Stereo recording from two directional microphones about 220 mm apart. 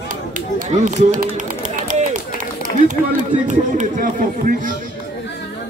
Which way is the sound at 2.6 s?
35° right (ahead or behind).